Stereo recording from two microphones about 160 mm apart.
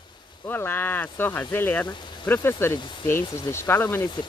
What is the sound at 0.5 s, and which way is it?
Speech, 10° left (ahead or behind).